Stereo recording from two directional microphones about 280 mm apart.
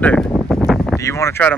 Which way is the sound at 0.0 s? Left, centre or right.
Centre.